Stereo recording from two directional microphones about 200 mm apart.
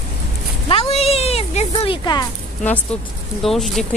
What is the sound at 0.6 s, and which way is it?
Speech, 30° left (ahead or behind).